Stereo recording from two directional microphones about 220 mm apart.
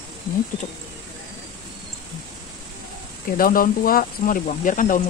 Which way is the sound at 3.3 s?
40° left (ahead or behind).